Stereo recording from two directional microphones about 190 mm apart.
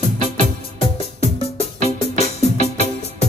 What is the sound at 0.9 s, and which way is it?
Music, 30° left (ahead or behind).